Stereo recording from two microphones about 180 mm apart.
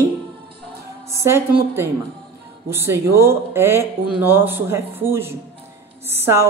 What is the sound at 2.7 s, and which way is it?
A woman's voice, 15° right (ahead or behind).